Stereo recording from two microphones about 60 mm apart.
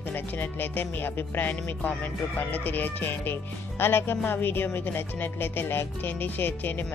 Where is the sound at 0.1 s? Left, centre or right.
Left.